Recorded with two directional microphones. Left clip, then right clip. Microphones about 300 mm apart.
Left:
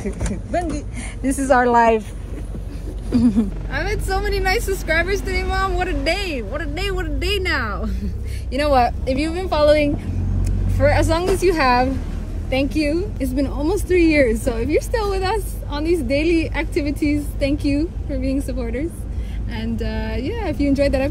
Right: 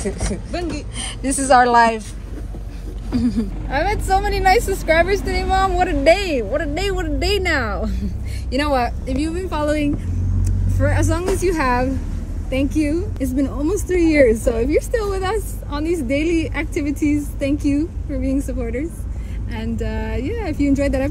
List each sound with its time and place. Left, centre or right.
0.5 s speech: left
0.9 s speech: centre
3.2 s a woman's voice: centre